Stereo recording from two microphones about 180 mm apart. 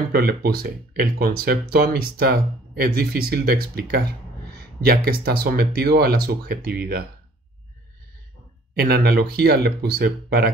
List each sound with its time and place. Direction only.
0.1 s speech: 60° right (ahead or behind)
8.7 s speech: 60° right (ahead or behind)